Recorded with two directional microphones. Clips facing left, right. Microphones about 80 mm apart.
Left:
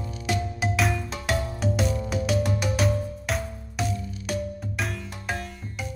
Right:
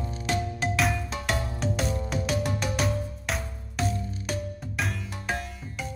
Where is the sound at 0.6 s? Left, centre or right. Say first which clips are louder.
Left 2 dB; centre.